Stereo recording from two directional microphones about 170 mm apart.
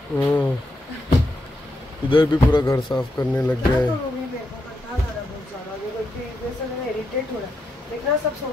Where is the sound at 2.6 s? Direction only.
20° left (ahead or behind).